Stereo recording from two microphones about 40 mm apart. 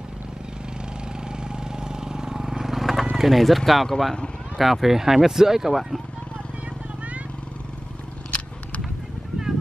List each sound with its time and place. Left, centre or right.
1.3 s vehicle: centre
3.2 s speech: centre